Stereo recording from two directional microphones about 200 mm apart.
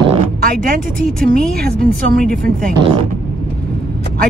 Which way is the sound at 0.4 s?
45° right (ahead or behind).